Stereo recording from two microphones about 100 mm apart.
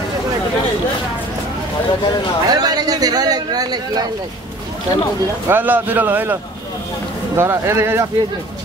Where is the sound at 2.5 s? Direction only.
40° right (ahead or behind).